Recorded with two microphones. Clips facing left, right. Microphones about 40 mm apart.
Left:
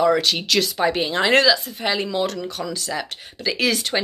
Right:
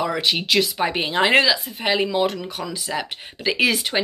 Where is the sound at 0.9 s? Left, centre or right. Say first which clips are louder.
Left 1 dB; right.